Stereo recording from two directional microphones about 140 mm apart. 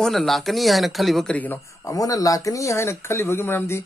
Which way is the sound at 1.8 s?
25° left (ahead or behind).